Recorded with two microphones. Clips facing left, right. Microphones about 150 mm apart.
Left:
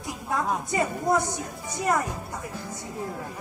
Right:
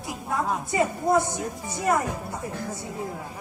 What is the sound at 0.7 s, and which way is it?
Speech, 20° right (ahead or behind).